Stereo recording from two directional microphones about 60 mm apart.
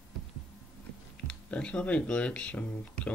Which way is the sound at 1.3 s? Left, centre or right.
Centre.